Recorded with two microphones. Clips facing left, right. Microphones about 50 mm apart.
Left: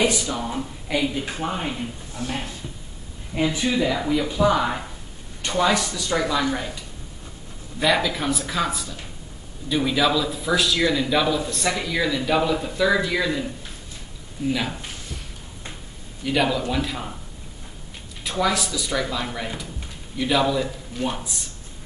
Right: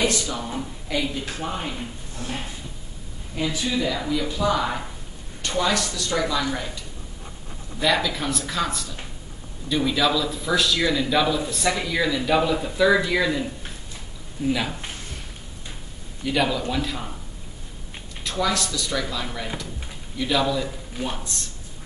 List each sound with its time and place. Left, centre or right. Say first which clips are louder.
0.0 s speech: left 2 dB; centre
7.8 s a man's voice: left 1 dB; centre
14.5 s a man's voice: even; centre
16.3 s a man's voice: left 1 dB; centre
18.2 s speech: left 2 dB; centre